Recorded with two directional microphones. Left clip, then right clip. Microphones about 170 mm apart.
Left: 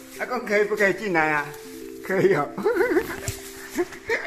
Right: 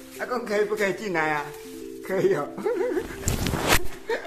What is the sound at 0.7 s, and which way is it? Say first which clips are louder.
Speech: left 4 dB; 15° left (ahead or behind).